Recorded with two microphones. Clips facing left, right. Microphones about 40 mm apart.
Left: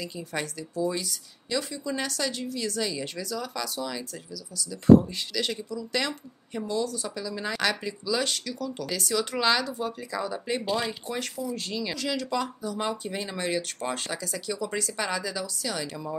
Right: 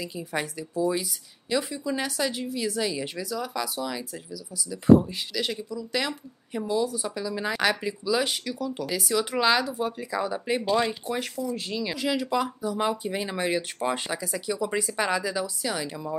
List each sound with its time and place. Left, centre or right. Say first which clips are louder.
0.0 s speech: right 2 dB; centre
11.5 s speech: right 1 dB; centre